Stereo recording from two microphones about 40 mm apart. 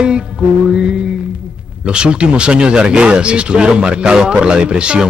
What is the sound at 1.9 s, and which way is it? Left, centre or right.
Speech, right.